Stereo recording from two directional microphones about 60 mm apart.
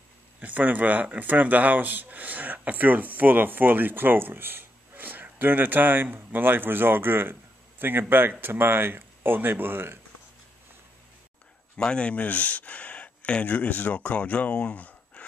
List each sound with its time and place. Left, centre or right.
0.4 s speech: right
11.7 s speech: centre